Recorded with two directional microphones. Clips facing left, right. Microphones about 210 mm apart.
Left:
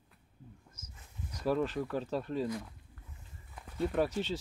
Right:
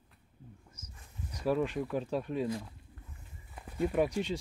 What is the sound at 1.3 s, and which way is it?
Speech, 10° right (ahead or behind).